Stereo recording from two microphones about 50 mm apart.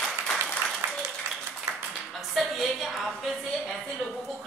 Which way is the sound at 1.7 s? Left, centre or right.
Right.